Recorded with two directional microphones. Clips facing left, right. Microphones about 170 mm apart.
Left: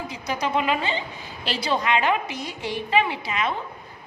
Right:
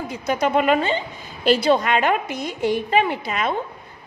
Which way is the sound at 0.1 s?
50° right (ahead or behind).